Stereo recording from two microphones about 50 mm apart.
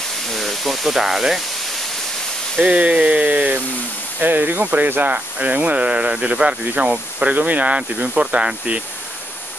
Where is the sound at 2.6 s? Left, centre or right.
Right.